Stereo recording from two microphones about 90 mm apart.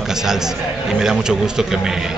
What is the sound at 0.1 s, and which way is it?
A man's voice, 5° right (ahead or behind).